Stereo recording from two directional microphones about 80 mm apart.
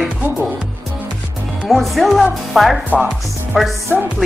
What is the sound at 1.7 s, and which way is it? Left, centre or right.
A woman's voice, centre.